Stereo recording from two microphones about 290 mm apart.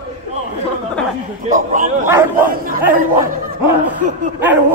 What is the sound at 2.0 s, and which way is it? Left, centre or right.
Bow-wow, centre.